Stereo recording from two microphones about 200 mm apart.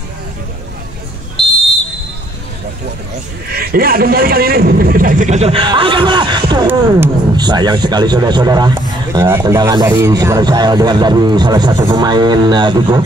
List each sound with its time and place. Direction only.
3.4 s speech: 50° right (ahead or behind); by 13.0 s 20° right (ahead or behind)